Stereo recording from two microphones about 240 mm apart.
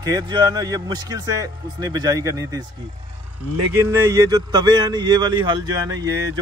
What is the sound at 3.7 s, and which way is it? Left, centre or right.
Speech, centre.